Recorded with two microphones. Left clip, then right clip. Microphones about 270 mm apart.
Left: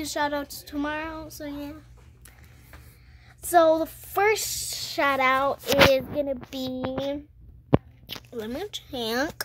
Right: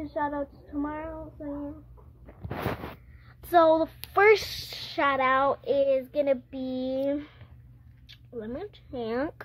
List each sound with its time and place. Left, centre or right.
0.0 s speech: left
3.4 s speech: centre
4.3 s speech: centre
8.4 s speech: centre